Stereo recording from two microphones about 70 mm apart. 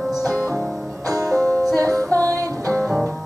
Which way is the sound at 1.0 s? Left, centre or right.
Right.